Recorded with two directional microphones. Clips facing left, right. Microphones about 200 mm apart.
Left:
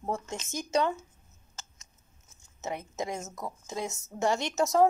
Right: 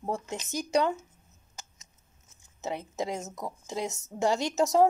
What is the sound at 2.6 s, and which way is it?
A woman's voice, 15° right (ahead or behind).